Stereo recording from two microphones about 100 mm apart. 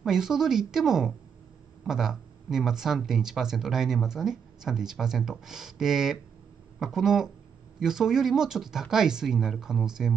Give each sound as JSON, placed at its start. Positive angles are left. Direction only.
{"t": 0.0, "sound": "speech", "side_deg": -5}